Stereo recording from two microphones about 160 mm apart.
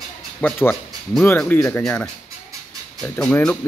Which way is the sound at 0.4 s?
5° left (ahead or behind).